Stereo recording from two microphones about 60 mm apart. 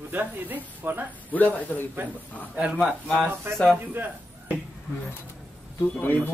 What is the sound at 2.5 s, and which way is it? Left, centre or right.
Speech, centre.